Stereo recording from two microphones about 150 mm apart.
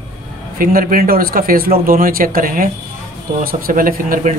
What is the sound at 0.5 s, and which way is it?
A man's voice, 70° right (ahead or behind).